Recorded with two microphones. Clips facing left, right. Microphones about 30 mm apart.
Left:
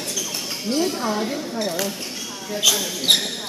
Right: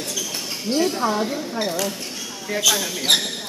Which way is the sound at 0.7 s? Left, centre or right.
Centre.